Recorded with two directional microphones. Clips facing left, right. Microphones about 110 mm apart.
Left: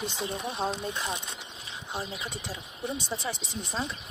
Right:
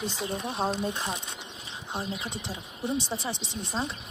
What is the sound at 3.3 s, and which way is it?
Speech, 35° right (ahead or behind).